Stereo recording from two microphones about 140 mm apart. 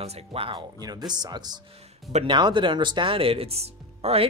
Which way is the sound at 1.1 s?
30° right (ahead or behind).